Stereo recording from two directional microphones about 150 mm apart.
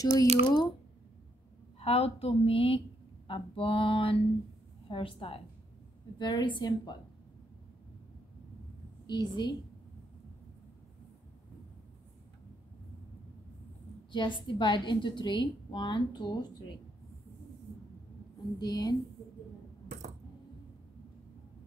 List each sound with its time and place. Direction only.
0.0 s a woman's voice: 25° left (ahead or behind)
1.8 s a woman's voice: 40° left (ahead or behind)
9.0 s a woman's voice: 25° left (ahead or behind)
14.1 s a woman's voice: 35° left (ahead or behind)
18.6 s a woman's voice: 25° left (ahead or behind)